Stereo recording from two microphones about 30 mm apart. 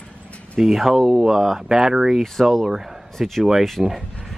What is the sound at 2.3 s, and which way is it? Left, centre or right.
Speech, centre.